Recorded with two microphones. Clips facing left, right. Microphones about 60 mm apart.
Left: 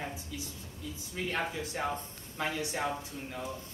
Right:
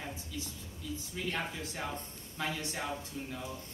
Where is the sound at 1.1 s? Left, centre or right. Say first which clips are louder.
Left 4 dB; left.